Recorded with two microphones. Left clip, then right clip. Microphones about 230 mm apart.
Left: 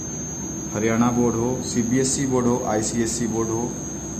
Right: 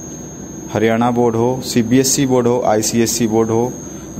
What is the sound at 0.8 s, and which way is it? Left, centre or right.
A man's voice, right.